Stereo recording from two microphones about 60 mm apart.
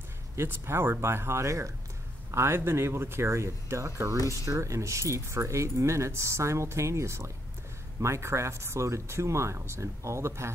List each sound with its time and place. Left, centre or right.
0.4 s speech: right